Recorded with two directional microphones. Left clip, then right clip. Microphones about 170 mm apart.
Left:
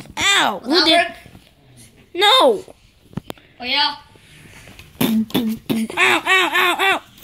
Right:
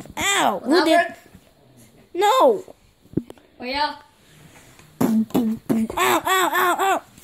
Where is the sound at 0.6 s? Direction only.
40° right (ahead or behind).